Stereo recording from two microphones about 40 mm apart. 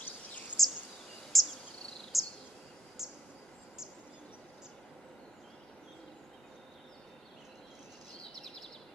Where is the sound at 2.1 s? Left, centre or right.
Centre.